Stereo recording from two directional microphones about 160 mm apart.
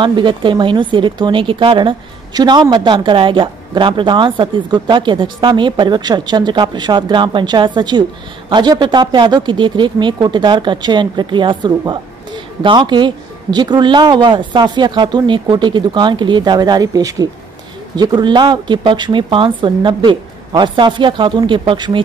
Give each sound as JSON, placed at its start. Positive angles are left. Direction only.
{"t": 0.0, "sound": "a woman's voice", "side_deg": -30}